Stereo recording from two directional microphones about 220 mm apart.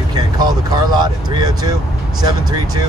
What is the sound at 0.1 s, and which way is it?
Speech, 20° right (ahead or behind).